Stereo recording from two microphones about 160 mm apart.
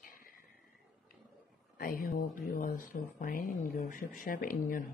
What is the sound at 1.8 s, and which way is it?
Speech, 65° left (ahead or behind).